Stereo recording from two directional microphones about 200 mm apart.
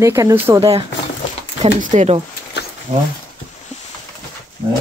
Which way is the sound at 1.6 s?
40° right (ahead or behind).